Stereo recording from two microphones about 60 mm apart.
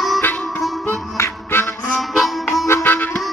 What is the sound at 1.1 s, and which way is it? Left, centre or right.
Music, left.